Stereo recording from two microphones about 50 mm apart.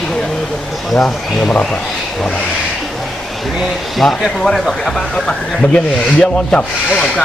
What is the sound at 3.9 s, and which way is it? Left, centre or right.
Speech, centre.